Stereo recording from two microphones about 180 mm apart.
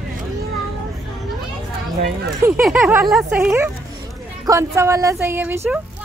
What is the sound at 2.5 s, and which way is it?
Speech, centre (ahead or behind).